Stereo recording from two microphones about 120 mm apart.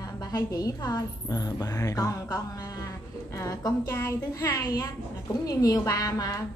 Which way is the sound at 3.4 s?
25° left (ahead or behind).